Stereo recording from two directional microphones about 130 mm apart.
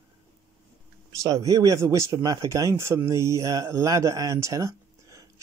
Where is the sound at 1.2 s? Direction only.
25° right (ahead or behind).